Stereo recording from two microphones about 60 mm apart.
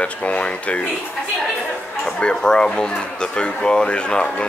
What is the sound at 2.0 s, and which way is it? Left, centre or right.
Speech, centre.